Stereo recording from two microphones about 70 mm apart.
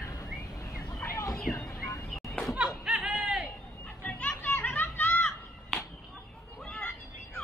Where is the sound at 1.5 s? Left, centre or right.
Left.